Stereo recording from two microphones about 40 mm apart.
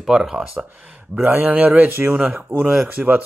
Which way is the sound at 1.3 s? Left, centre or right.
Right.